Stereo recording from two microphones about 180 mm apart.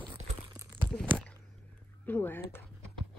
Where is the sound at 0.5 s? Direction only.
15° right (ahead or behind).